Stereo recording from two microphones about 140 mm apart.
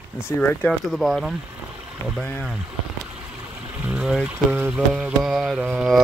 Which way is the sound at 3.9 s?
5° right (ahead or behind).